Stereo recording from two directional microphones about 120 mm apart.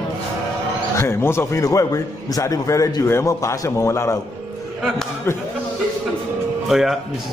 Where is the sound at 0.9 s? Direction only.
20° left (ahead or behind).